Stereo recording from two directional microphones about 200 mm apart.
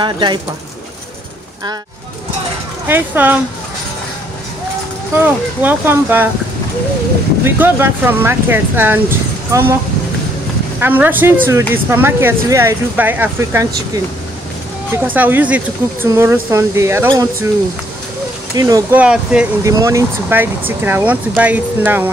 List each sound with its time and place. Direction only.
0.0 s speech: 20° right (ahead or behind)
2.9 s speech: 10° right (ahead or behind)
5.2 s speech: 10° right (ahead or behind)
7.4 s speech: 10° right (ahead or behind)
10.8 s speech: 10° right (ahead or behind)
15.0 s speech: 10° right (ahead or behind)
18.6 s speech: 15° right (ahead or behind)